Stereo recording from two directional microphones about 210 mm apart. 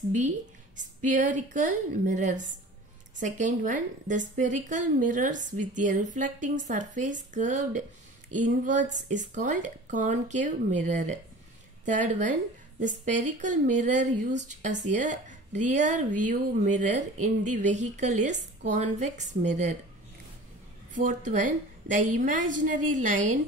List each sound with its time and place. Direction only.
1.0 s a woman's voice: 40° right (ahead or behind)
20.9 s a woman's voice: 35° right (ahead or behind)